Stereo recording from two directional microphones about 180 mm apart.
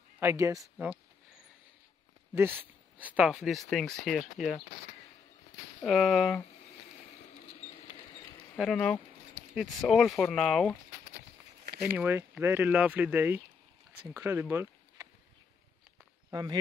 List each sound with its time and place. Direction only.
0.2 s speech: 15° right (ahead or behind)
2.3 s speech: 10° right (ahead or behind)
5.8 s speech: centre (ahead or behind)
7.3 s rodents: 40° left (ahead or behind)
8.5 s speech: 5° left (ahead or behind)
11.8 s speech: 10° right (ahead or behind)
16.3 s speech: 20° right (ahead or behind)